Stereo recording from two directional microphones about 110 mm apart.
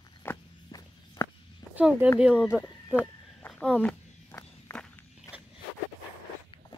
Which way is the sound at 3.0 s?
10° left (ahead or behind).